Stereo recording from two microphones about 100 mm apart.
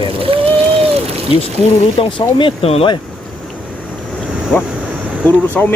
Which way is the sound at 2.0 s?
55° left (ahead or behind).